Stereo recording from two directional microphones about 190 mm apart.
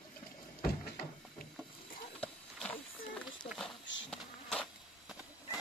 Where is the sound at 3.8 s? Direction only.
80° left.